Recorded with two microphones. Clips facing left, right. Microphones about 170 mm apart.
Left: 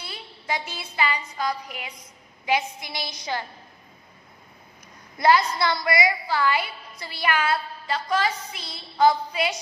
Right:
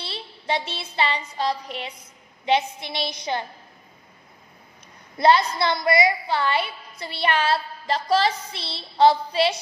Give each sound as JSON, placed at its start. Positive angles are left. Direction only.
{"t": 0.0, "sound": "a sound", "side_deg": -30}
{"t": 2.4, "sound": "a woman's voice", "side_deg": -25}
{"t": 5.1, "sound": "a woman's voice", "side_deg": -25}